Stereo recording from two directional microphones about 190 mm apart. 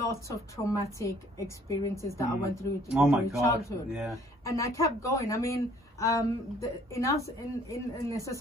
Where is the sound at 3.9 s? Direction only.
Centre (ahead or behind).